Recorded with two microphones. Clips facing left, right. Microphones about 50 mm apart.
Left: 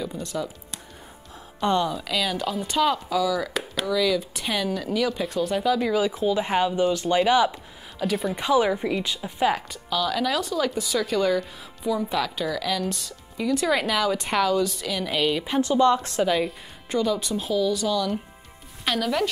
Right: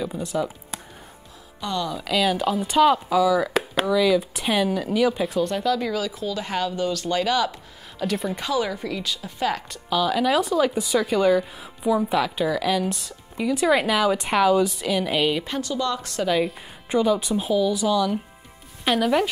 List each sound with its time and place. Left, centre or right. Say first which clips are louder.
0.0 s a woman's voice: right 4 dB; centre
1.6 s speech: left 5 dB; left
2.0 s a woman's voice: right 4 dB; centre
6.0 s speech: left 5 dB; left
8.0 s speech: even; centre
8.4 s speech: left 4 dB; centre
9.8 s a woman's voice: right 4 dB; centre
15.6 s speech: left 6 dB; left
16.3 s speech: right 4 dB; centre
16.9 s a woman's voice: right 4 dB; centre